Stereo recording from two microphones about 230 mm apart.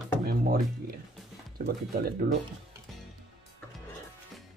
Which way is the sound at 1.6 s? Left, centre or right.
Right.